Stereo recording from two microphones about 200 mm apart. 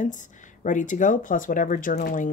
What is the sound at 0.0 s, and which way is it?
Speech, 40° left (ahead or behind).